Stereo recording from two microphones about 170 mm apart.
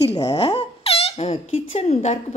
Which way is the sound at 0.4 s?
30° left (ahead or behind).